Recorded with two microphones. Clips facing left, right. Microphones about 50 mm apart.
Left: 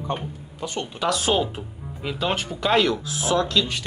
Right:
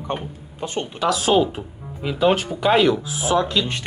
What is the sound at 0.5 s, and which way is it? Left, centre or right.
Speech, right.